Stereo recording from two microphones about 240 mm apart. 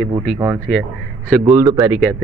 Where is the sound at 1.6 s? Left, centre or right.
Centre.